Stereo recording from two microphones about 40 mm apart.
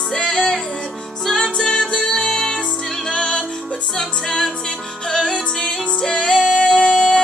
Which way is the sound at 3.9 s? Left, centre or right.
Centre.